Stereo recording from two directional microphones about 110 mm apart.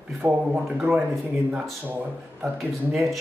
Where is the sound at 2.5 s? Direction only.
Centre (ahead or behind).